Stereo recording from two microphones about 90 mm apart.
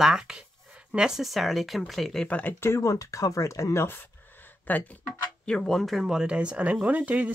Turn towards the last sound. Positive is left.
turn(degrees=-15)  # may be behind; listen again after turning